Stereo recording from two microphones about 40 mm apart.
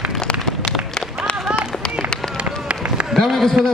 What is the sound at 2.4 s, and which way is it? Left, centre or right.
Run, right.